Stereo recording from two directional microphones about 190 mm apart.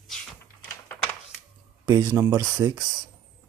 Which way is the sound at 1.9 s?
15° right (ahead or behind).